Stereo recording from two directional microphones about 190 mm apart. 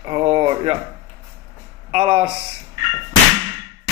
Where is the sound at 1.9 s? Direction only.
30° right (ahead or behind).